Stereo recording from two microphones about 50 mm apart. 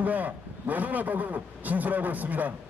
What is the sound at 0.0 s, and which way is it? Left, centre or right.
A man's voice, right.